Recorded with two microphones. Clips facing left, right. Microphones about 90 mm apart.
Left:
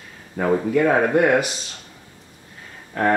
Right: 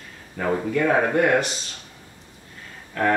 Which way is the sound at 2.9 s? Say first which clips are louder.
Left 2 dB; 20° left (ahead or behind).